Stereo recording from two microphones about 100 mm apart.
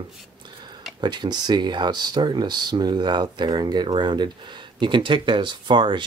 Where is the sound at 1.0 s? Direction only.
45° right (ahead or behind).